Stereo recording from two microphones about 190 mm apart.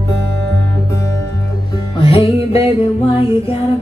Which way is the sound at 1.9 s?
30° left (ahead or behind).